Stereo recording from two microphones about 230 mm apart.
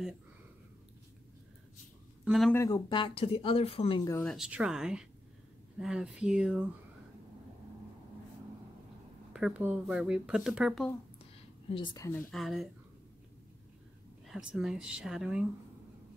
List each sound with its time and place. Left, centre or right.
2.2 s speech: centre
2.5 s speech: centre
4.1 s speech: centre
9.3 s speech: centre
11.7 s speech: centre
14.2 s speech: centre